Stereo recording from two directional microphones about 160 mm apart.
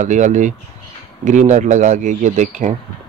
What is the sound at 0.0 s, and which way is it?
Speech, 50° right (ahead or behind).